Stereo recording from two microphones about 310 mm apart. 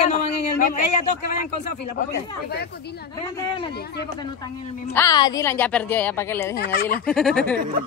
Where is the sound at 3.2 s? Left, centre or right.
Centre.